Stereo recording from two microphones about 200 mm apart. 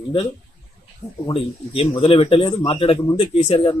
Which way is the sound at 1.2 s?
25° left (ahead or behind).